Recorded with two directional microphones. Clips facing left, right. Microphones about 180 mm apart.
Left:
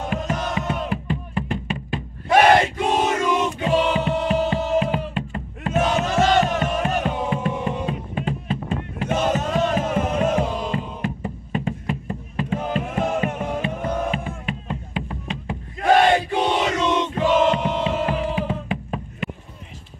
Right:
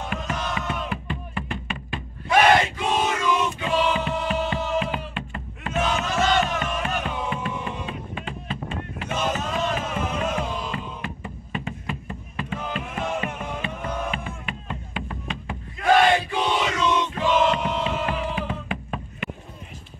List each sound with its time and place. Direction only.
0.2 s music: 40° left (ahead or behind)
16.3 s crowd: 45° left (ahead or behind)
17.5 s music: 25° left (ahead or behind)